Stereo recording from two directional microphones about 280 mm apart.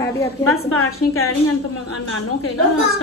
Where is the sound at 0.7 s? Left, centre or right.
Left.